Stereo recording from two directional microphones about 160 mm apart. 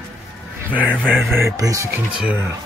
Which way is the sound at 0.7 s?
10° right (ahead or behind).